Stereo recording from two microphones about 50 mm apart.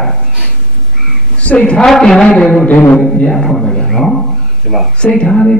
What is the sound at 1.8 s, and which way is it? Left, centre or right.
Speech, centre.